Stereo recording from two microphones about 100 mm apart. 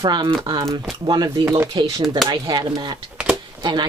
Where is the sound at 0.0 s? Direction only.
45° right (ahead or behind).